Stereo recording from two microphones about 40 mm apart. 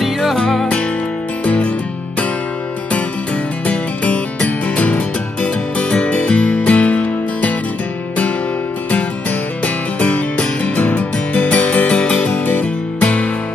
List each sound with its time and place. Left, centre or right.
0.0 s music: centre
1.4 s music: left
3.6 s music: left
9.9 s music: left